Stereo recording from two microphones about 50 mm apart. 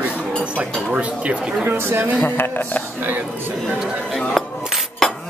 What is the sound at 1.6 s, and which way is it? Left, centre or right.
Speech, right.